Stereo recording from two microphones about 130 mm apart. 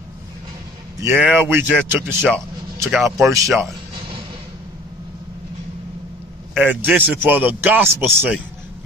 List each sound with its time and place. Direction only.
1.0 s speech: 15° right (ahead or behind)
2.9 s speech: centre (ahead or behind)
3.3 s speech: 25° right (ahead or behind)
6.6 s speech: 15° right (ahead or behind)